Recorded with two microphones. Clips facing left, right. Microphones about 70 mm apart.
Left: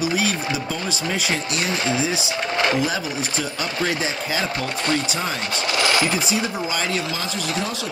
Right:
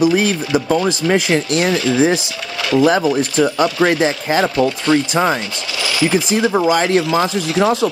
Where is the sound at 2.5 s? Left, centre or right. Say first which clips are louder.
Right 4 dB; left.